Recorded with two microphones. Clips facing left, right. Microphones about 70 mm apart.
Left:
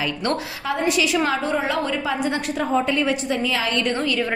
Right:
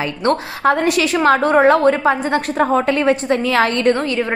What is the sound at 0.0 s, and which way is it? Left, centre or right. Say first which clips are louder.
Speech: right 6 dB; right.